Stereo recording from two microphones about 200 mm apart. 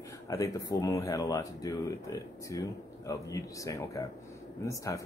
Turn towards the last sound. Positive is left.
turn(degrees=15)  # may be behind; listen again after turning